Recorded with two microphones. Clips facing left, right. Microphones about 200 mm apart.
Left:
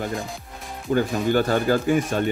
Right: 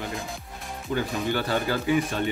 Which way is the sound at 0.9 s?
45° left (ahead or behind).